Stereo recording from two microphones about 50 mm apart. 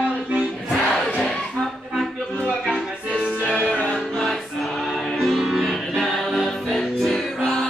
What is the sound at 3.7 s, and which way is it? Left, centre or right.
Music, centre.